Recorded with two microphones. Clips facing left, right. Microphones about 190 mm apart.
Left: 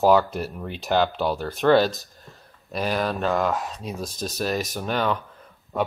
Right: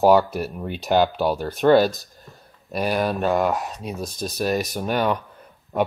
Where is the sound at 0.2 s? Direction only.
5° right (ahead or behind).